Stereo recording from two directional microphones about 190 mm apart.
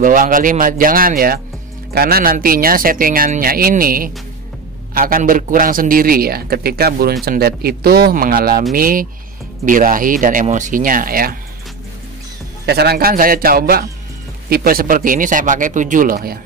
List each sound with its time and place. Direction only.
0.0 s a man's voice: 45° right (ahead or behind)
12.6 s a man's voice: 60° right (ahead or behind)